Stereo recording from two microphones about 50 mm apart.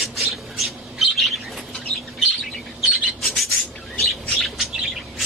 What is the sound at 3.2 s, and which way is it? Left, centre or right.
Bird, centre.